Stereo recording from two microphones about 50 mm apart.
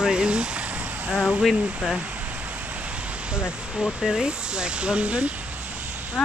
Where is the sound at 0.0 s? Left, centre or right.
Centre.